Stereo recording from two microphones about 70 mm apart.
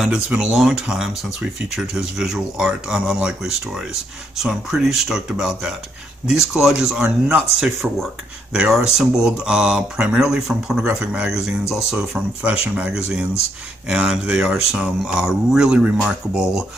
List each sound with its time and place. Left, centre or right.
0.5 s speech: centre
12.6 s speech: right
12.9 s speech: centre